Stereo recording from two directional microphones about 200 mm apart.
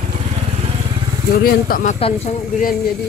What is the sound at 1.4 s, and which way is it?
Speech, 40° left (ahead or behind).